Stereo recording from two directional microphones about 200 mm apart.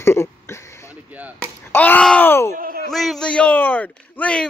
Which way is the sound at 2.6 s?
45° right (ahead or behind).